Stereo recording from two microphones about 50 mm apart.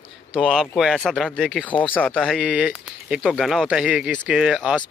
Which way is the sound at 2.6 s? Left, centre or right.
Centre.